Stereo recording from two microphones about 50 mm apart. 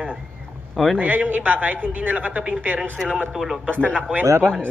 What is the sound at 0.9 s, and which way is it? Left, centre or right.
Speech, right.